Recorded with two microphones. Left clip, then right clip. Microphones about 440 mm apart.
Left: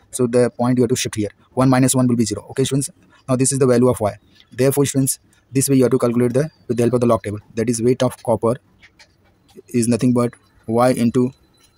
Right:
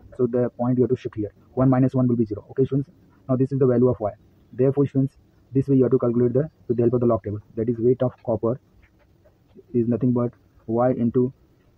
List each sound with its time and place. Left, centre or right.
0.2 s speech: right
9.8 s speech: centre